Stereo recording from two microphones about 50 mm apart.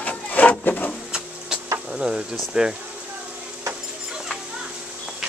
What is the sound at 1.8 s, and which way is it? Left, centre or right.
Speech, centre.